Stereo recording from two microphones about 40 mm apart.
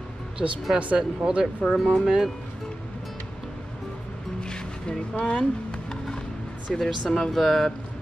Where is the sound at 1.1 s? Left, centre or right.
Right.